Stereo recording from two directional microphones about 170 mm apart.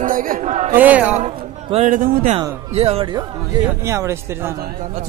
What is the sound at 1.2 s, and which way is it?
Speech, 40° right (ahead or behind).